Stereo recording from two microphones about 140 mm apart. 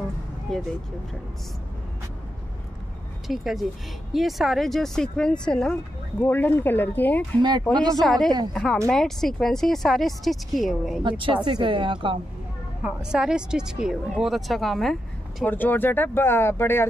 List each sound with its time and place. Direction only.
0.5 s speech: 5° left (ahead or behind)
3.3 s speech: centre (ahead or behind)
7.7 s speech: 30° right (ahead or behind)
8.0 s speech: 5° left (ahead or behind)
11.0 s speech: 35° right (ahead or behind)
12.8 s speech: 5° right (ahead or behind)
15.5 s speech: 15° left (ahead or behind)